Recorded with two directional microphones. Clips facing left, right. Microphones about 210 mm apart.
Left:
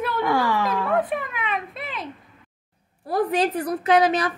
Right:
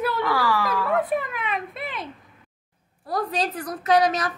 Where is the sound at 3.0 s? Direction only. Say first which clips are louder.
Left 5 dB; 30° left (ahead or behind).